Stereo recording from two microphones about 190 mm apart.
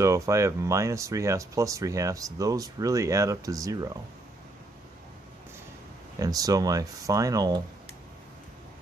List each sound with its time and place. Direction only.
0.0 s speech: 15° right (ahead or behind)
6.1 s speech: 20° right (ahead or behind)